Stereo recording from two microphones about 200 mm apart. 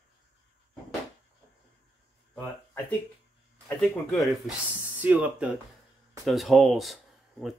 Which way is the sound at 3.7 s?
Centre (ahead or behind).